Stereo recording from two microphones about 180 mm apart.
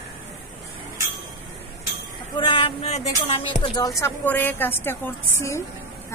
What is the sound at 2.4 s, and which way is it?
Speech, 30° left (ahead or behind).